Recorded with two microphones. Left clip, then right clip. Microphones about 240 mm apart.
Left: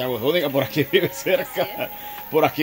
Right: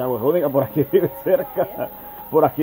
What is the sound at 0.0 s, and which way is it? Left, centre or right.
Speech, centre.